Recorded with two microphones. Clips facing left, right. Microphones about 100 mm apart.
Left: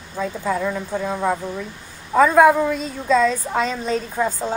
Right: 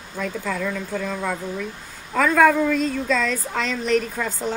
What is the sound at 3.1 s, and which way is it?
A woman's voice, 35° left (ahead or behind).